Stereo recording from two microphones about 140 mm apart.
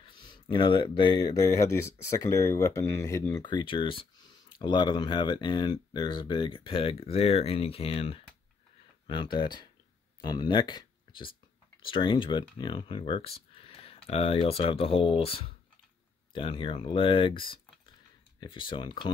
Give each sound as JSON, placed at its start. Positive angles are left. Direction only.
{"t": 0.0, "sound": "speech", "side_deg": 35}
{"t": 3.4, "sound": "speech", "side_deg": 35}
{"t": 9.0, "sound": "speech", "side_deg": 35}